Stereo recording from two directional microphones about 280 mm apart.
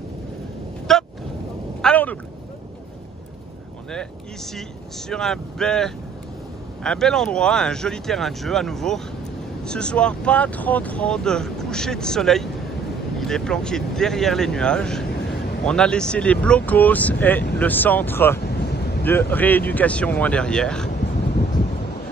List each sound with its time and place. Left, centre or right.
0.9 s vehicle: centre
1.8 s a sound: centre
3.9 s speech: centre
18.4 s vehicle: left
19.3 s speech: centre
20.9 s a sound: left